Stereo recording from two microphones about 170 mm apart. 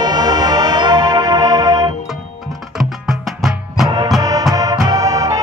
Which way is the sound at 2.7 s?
Centre (ahead or behind).